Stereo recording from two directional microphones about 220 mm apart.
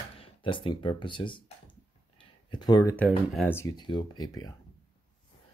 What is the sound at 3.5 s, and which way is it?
Speech, 20° left (ahead or behind).